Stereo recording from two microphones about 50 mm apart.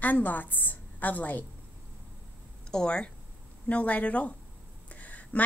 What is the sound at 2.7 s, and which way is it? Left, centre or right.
A woman's voice, left.